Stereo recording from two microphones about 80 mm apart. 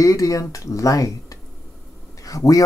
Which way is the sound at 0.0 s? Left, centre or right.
Left.